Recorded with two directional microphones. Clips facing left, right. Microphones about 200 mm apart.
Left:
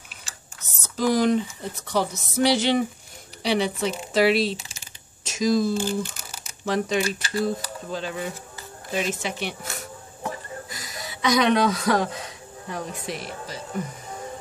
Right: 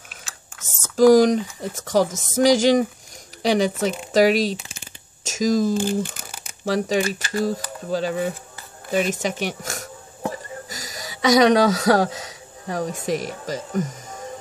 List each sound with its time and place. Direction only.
0.8 s speech: 45° right (ahead or behind)
1.7 s speech: 90° right
2.4 s speech: 45° right (ahead or behind)
6.6 s speech: 40° right (ahead or behind)
10.7 s a sound: 45° right (ahead or behind)
11.6 s speech: 85° right
12.1 s a sound: 90° right
12.7 s speech: 45° right (ahead or behind)